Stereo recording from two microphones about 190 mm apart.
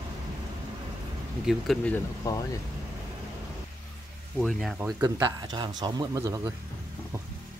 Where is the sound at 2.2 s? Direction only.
20° left (ahead or behind).